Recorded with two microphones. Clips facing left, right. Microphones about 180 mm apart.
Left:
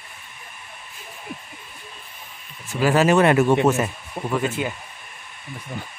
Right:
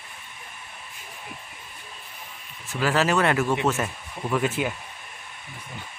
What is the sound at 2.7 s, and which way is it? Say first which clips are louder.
Speech: left 5 dB; 15° left (ahead or behind).